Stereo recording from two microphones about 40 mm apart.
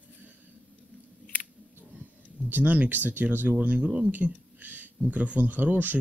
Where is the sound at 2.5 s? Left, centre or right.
Right.